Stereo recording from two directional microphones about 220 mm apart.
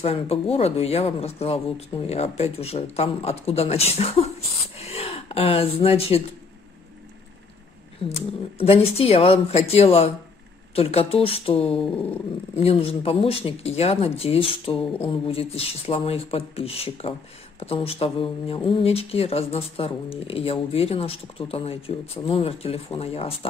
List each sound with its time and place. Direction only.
0.0 s speech: 25° left (ahead or behind)
4.7 s gasp: 30° left (ahead or behind)
8.1 s speech: 25° left (ahead or behind)